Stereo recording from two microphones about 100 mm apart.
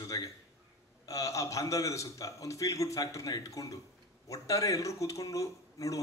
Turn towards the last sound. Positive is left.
turn(degrees=35)  # may be behind; listen again after turning